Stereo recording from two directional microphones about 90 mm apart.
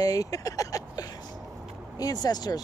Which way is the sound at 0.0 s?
40° left (ahead or behind).